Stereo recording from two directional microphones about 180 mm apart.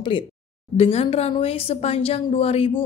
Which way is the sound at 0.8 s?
35° left (ahead or behind).